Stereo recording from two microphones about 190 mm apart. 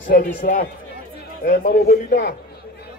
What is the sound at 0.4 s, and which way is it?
A man's voice, 45° left (ahead or behind).